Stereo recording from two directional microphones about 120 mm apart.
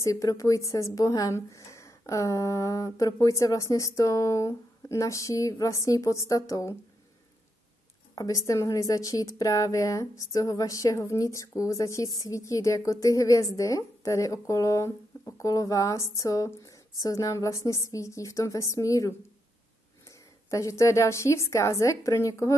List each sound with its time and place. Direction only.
0.0 s a woman's voice: 30° left (ahead or behind)
8.1 s a woman's voice: 30° left (ahead or behind)